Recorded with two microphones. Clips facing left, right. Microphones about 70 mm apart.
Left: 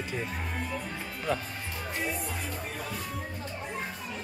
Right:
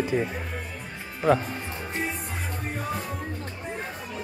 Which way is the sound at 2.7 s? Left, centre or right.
Right.